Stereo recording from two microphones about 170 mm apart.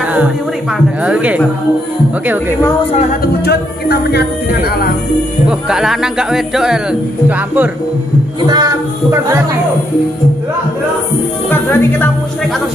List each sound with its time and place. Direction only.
1.0 s speech: 10° right (ahead or behind)
2.9 s music: 40° left (ahead or behind)
3.4 s music: 75° left (ahead or behind)
5.5 s speech: 5° right (ahead or behind)
8.5 s speech: 20° right (ahead or behind)
11.5 s speech: 10° left (ahead or behind)